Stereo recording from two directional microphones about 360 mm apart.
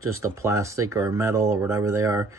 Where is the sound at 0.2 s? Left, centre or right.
Centre.